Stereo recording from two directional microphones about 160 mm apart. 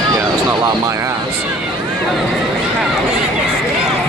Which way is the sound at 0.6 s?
20° right (ahead or behind).